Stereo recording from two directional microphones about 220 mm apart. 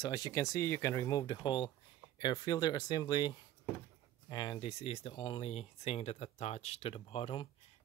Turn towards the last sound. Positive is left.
turn(degrees=25)  # may be behind; listen again after turning